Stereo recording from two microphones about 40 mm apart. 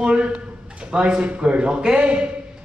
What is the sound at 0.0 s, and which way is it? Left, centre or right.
A woman's voice, right.